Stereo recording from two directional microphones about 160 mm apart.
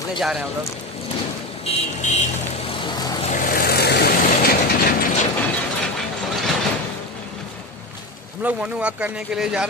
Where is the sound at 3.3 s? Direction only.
70° left (ahead or behind); by 4.6 s 85° left.